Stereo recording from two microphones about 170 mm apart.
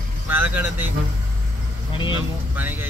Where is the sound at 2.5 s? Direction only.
10° right (ahead or behind).